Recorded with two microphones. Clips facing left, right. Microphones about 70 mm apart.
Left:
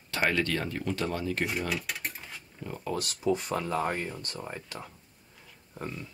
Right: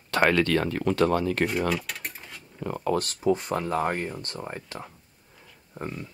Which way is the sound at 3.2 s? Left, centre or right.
Right.